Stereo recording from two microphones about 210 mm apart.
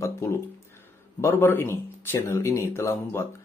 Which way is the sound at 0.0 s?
10° left (ahead or behind).